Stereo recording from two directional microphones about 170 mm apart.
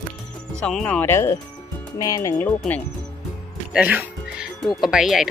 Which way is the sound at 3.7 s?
5° right (ahead or behind).